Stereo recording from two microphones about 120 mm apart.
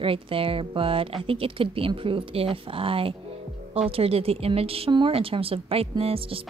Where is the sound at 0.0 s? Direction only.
50° right (ahead or behind).